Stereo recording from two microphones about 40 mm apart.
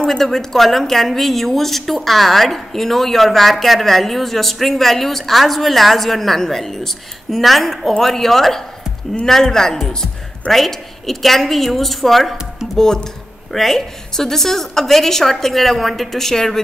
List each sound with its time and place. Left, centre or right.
0.0 s a woman's voice: centre
12.7 s a woman's voice: centre